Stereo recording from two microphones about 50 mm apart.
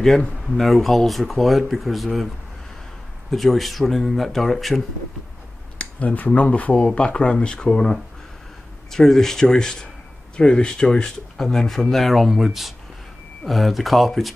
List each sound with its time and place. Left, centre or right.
0.5 s speech: centre
3.3 s speech: centre
5.8 s speech: left; by 14.3 s centre